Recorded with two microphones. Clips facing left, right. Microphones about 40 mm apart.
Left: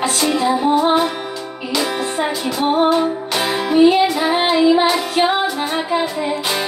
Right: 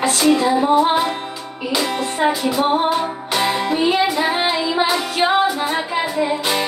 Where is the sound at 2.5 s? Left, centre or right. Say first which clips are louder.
Left 2 dB; centre.